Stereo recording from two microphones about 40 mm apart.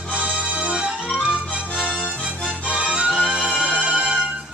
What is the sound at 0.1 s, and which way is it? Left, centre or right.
Music, right.